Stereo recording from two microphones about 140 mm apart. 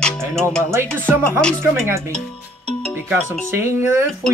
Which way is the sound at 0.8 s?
10° left (ahead or behind).